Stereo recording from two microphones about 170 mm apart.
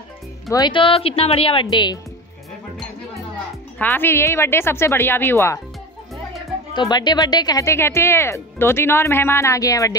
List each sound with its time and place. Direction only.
0.5 s speech: 25° left (ahead or behind)
3.7 s speech: 10° left (ahead or behind)
6.7 s speech: 25° left (ahead or behind)